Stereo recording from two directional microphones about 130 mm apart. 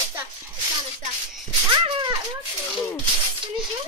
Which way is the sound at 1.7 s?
40° right (ahead or behind).